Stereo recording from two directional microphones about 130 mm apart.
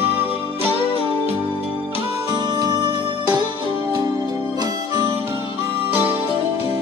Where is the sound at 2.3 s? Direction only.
30° right (ahead or behind).